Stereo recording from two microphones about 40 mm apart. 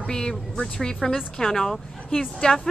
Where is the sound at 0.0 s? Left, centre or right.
Centre.